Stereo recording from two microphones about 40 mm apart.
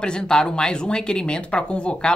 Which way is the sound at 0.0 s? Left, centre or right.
Centre.